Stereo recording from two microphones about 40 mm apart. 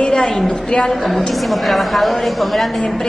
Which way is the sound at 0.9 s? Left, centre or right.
Centre.